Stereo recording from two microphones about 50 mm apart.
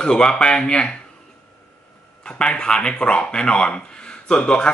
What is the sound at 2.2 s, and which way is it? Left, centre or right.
Speech, centre.